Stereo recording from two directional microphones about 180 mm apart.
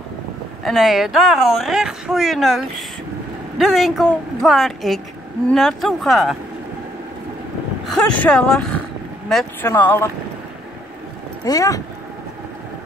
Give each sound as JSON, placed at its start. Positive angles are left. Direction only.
{"t": 0.7, "sound": "speech", "side_deg": 0}
{"t": 7.8, "sound": "speech", "side_deg": 5}
{"t": 11.4, "sound": "speech", "side_deg": 20}